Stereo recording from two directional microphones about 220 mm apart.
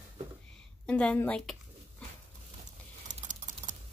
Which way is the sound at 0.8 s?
5° left (ahead or behind).